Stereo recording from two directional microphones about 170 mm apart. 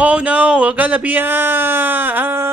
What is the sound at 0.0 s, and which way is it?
Speech, 10° right (ahead or behind).